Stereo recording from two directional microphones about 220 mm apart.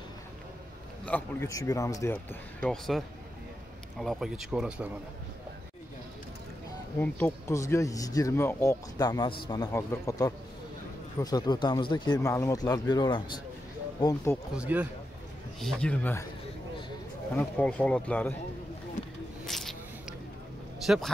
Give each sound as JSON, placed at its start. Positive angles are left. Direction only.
{"t": 1.0, "sound": "speech", "side_deg": 10}
{"t": 2.6, "sound": "speech", "side_deg": 5}
{"t": 4.0, "sound": "speech", "side_deg": 0}
{"t": 7.0, "sound": "speech", "side_deg": 10}
{"t": 14.5, "sound": "speech", "side_deg": -5}
{"t": 15.6, "sound": "speech", "side_deg": 5}
{"t": 17.4, "sound": "speech", "side_deg": 5}
{"t": 19.4, "sound": "a sound", "side_deg": 0}
{"t": 20.8, "sound": "speech", "side_deg": 0}